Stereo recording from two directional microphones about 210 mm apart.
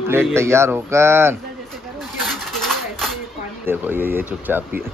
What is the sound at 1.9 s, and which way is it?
Bird, centre (ahead or behind).